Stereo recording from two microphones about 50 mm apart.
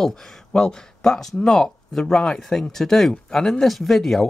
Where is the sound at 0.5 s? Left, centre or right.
Centre.